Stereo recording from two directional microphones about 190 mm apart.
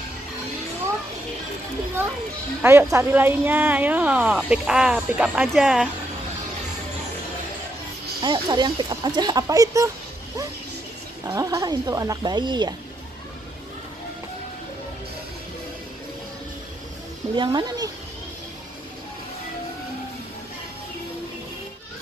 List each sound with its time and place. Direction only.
2.6 s speech: 10° right (ahead or behind)
8.2 s speech: 25° right (ahead or behind)
11.2 s speech: 15° right (ahead or behind)
17.4 s speech: 20° right (ahead or behind)